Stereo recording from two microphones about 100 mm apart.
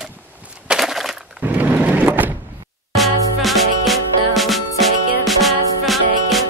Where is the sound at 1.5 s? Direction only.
15° right (ahead or behind).